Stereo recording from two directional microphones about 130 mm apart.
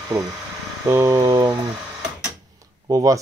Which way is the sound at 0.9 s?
25° right (ahead or behind).